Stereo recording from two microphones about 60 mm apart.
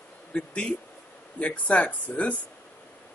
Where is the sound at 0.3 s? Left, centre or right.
Left.